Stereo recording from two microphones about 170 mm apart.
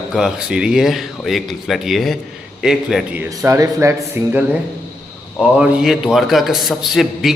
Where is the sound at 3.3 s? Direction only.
20° right (ahead or behind).